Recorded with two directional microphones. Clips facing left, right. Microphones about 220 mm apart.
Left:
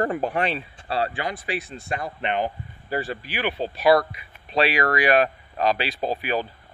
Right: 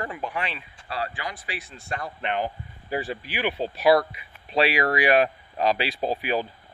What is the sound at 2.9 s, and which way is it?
Speech, 5° right (ahead or behind).